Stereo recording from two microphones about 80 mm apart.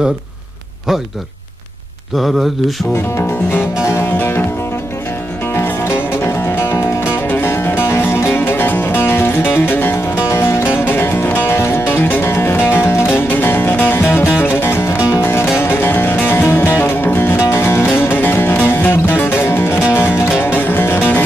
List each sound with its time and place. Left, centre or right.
2.1 s speech: centre
3.9 s music: left
5.5 s music: left